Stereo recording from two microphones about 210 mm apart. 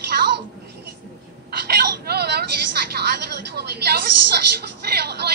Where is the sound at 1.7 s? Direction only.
50° right (ahead or behind).